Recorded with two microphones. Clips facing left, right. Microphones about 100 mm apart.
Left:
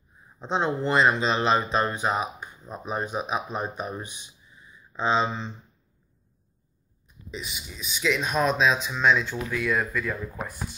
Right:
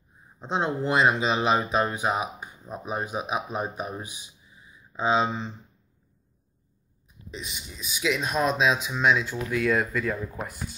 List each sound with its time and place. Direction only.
0.4 s speech: 5° right (ahead or behind)
7.2 s speech: centre (ahead or behind)
9.5 s speech: 30° right (ahead or behind)